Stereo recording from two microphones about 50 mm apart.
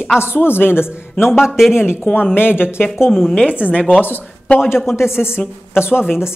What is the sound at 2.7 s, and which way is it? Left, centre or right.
Speech, left.